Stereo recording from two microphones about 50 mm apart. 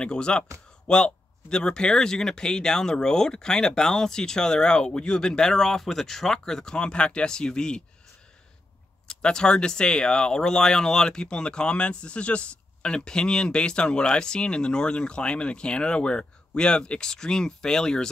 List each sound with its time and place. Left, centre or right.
0.0 s speech: centre
9.0 s speech: centre